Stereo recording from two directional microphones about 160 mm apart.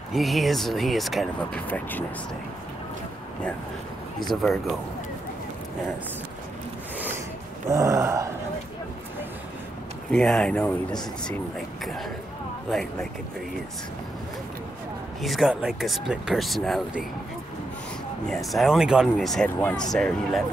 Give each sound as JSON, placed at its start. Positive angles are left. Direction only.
{"t": 0.1, "sound": "speech", "side_deg": 0}
{"t": 1.7, "sound": "speech", "side_deg": 10}
{"t": 4.3, "sound": "speech", "side_deg": 0}
{"t": 7.7, "sound": "gasp", "side_deg": -20}
{"t": 10.1, "sound": "speech", "side_deg": 5}
{"t": 15.2, "sound": "speech", "side_deg": 0}
{"t": 18.3, "sound": "speech", "side_deg": 0}